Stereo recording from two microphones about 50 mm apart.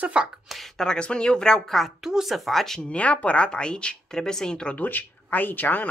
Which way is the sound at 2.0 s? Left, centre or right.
Centre.